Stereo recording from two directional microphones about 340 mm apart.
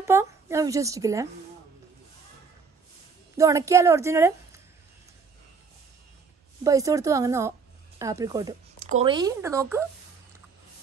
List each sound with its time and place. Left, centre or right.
0.0 s a woman's voice: centre
3.3 s speech: centre
6.6 s speech: centre